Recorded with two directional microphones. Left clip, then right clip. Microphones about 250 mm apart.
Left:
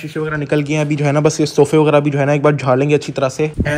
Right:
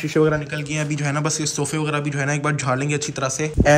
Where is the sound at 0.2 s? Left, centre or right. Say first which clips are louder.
Right 4 dB; right.